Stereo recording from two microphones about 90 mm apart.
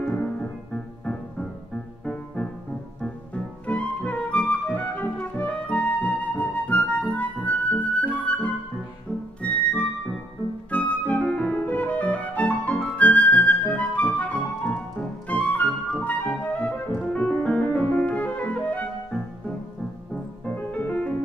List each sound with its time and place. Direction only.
0.1 s music: 10° left (ahead or behind)
3.6 s music: 15° left (ahead or behind)
20.4 s music: 20° left (ahead or behind)